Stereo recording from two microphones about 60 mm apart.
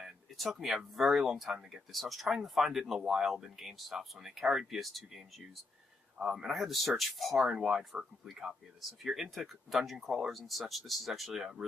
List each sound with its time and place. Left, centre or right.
0.0 s speech: centre